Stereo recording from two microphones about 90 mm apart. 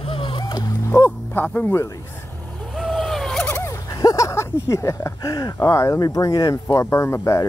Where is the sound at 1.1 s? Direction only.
15° left (ahead or behind).